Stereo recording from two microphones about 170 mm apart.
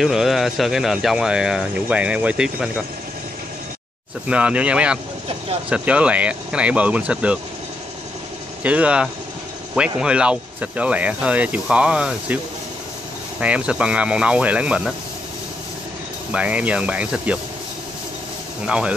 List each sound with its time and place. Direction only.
0.0 s speech: centre (ahead or behind)
4.3 s speech: 5° right (ahead or behind)
8.6 s speech: 5° right (ahead or behind)
13.4 s speech: 5° right (ahead or behind)
16.3 s speech: 5° right (ahead or behind)
18.7 s speech: 5° right (ahead or behind)